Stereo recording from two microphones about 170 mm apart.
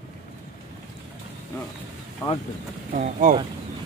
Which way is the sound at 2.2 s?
15° left (ahead or behind).